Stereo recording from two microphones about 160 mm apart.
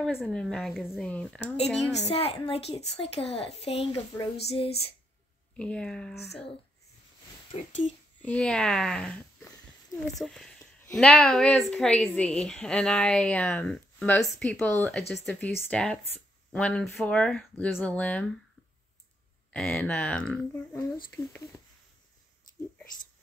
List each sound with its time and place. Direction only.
0.0 s a woman's voice: centre (ahead or behind)
1.9 s a woman's voice: 40° left (ahead or behind)
5.6 s a woman's voice: 5° left (ahead or behind)
7.5 s a woman's voice: 35° left (ahead or behind)
8.3 s a woman's voice: 5° left (ahead or behind)
10.2 s a woman's voice: 5° left (ahead or behind)
19.5 s speech: 5° left (ahead or behind)